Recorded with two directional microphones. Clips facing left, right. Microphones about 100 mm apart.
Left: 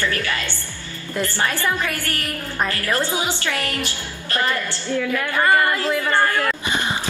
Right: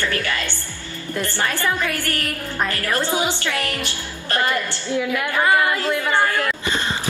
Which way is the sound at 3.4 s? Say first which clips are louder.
Even; 15° left (ahead or behind).